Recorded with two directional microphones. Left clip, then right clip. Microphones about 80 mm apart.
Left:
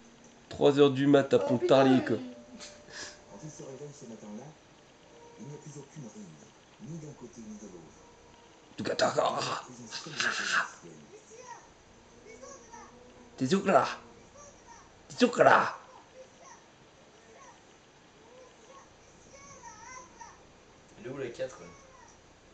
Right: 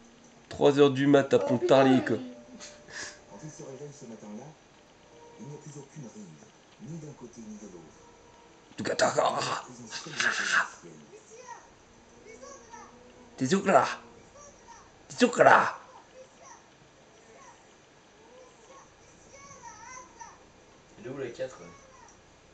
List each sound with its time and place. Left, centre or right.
0.5 s a sound: centre
8.7 s speech: centre
13.4 s speech: centre
15.0 s a woman's voice: centre
21.0 s speech: centre